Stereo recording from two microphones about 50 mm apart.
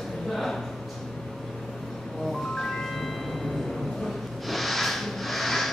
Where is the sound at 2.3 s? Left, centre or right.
Centre.